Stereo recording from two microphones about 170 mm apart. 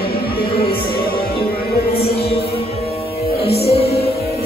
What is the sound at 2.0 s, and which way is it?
Music, 35° left (ahead or behind).